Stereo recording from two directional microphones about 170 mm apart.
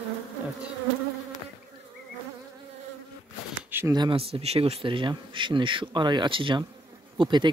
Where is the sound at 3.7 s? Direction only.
15° right (ahead or behind).